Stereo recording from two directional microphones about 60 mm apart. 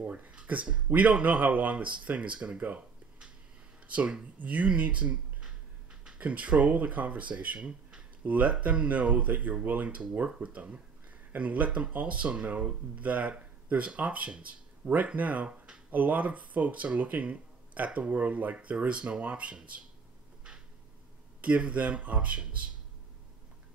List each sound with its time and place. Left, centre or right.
0.0 s a sound: right
0.3 s speech: centre
3.9 s speech: centre
21.4 s speech: right